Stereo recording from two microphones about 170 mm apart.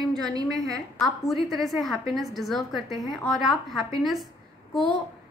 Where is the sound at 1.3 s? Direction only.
Centre (ahead or behind).